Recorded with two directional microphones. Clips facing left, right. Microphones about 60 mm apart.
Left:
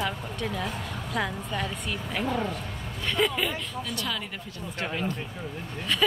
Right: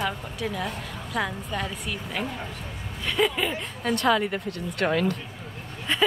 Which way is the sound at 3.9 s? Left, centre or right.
Right.